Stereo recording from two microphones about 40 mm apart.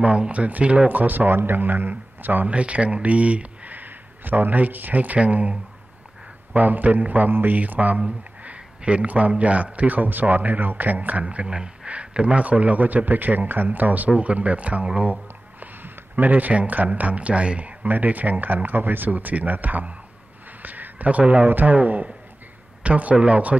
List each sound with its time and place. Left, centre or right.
0.0 s a man's voice: right
0.8 s speech: right
2.4 s a man's voice: right
3.7 s speech: right
6.5 s speech: right
7.5 s speech: right
8.2 s a sound: right
9.4 s a man's voice: right
14.1 s a man's voice: right
15.6 s speech: right
17.8 s speech: right
21.5 s a man's voice: right